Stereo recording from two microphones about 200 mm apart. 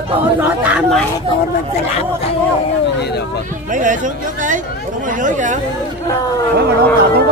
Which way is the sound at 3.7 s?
40° right (ahead or behind).